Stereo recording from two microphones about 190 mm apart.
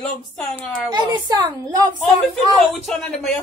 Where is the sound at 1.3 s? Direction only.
25° right (ahead or behind).